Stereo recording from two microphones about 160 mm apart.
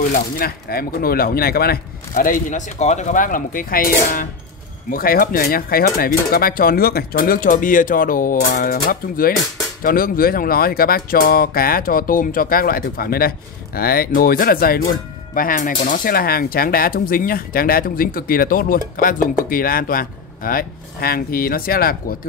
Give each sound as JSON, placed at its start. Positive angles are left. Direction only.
{"t": 0.1, "sound": "speech", "side_deg": 70}